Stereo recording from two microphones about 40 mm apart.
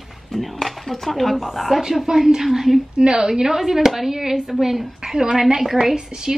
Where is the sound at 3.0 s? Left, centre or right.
Centre.